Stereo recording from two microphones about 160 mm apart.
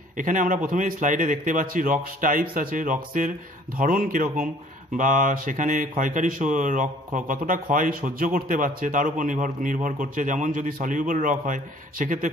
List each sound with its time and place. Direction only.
0.2 s a man's voice: 55° right (ahead or behind)